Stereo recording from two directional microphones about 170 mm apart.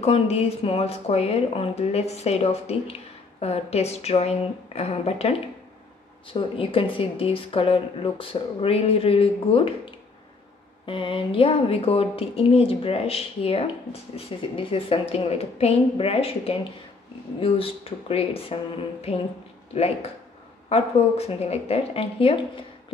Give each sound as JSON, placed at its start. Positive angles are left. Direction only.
{"t": 0.0, "sound": "speech", "side_deg": 35}